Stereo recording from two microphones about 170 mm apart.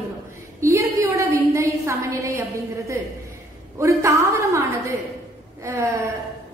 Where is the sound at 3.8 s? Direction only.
15° right (ahead or behind).